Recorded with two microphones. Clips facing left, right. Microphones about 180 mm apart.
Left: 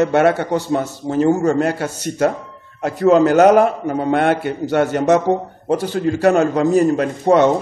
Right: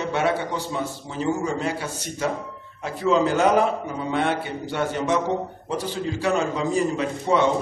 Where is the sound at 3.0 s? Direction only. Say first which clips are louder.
Left 8 dB; 45° left (ahead or behind).